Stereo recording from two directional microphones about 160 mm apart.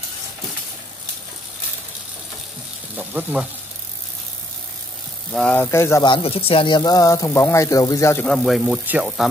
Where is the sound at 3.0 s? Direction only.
10° right (ahead or behind).